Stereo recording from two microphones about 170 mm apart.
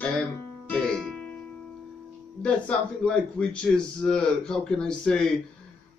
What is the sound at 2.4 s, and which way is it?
A man's voice, 5° left (ahead or behind).